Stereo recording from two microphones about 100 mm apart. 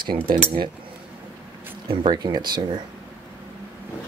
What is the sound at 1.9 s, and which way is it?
Speech, 50° right (ahead or behind).